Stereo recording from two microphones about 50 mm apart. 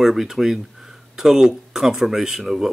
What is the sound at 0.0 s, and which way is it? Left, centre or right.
Speech, centre.